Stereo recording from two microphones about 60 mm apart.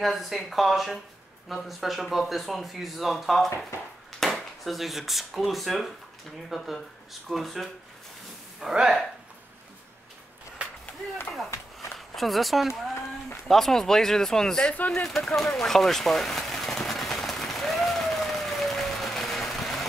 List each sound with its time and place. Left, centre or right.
0.0 s speech: centre
8.5 s speech: centre
12.2 s speech: centre
14.9 s a sound: centre